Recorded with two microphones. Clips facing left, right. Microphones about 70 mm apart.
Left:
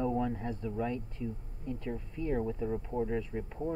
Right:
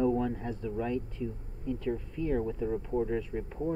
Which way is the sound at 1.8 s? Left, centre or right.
Centre.